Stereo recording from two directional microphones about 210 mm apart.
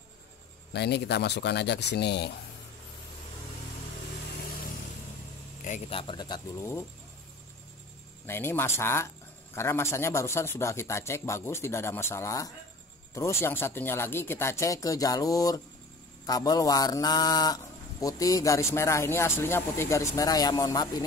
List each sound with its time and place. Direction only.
0.7 s speech: 50° left (ahead or behind)
5.6 s a man's voice: 35° left (ahead or behind)
5.9 s speech: 20° left (ahead or behind)
8.3 s speech: 10° left (ahead or behind)